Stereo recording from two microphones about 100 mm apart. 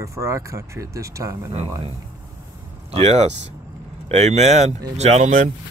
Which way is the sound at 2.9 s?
90° right.